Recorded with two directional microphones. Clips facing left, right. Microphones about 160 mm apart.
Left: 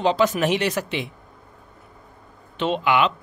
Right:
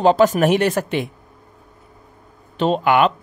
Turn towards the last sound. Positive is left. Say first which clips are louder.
# right 4 dB
turn(degrees=-50)  # may be behind; listen again after turning